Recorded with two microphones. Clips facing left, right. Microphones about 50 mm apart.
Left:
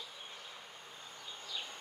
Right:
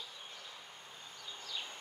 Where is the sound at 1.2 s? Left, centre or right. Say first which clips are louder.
Right 1 dB; centre.